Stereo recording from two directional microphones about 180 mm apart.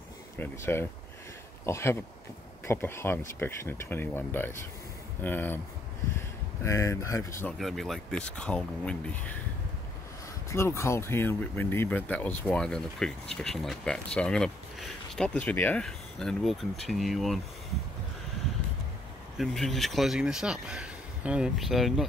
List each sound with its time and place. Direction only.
0.4 s speech: 15° left (ahead or behind)
7.5 s speech: centre (ahead or behind)
10.5 s speech: 15° left (ahead or behind)
19.3 s speech: centre (ahead or behind)